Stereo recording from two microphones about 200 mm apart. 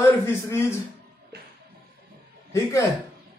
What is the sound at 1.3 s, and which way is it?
Music, 55° right (ahead or behind).